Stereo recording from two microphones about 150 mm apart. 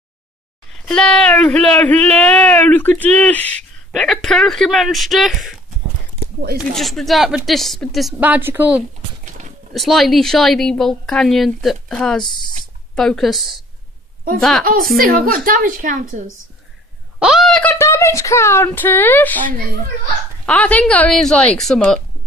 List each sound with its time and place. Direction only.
0.8 s speech: 5° left (ahead or behind)
6.7 s speech: centre (ahead or behind)
8.2 s a woman's voice: 15° right (ahead or behind)
9.8 s speech: centre (ahead or behind)
14.6 s a woman's voice: 70° right (ahead or behind)
17.2 s speech: centre (ahead or behind)
20.4 s speech: 10° left (ahead or behind)